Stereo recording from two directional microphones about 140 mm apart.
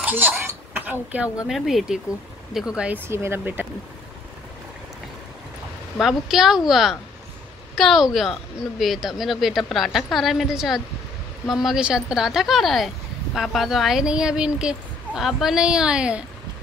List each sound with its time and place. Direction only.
0.0 s a sound: 15° right (ahead or behind)
1.5 s speech: centre (ahead or behind)
3.1 s speech: 15° right (ahead or behind)
5.9 s speech: centre (ahead or behind)